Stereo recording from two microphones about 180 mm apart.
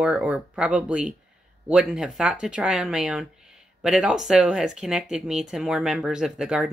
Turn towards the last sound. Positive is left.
turn(degrees=-5)  # may be behind; listen again after turning